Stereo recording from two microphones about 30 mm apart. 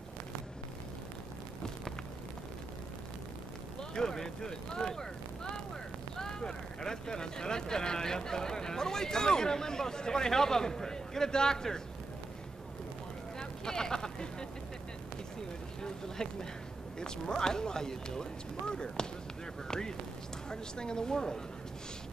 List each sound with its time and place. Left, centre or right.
3.9 s speech: centre
13.4 s vehicle: left
15.8 s vehicle: left
17.0 s speech: left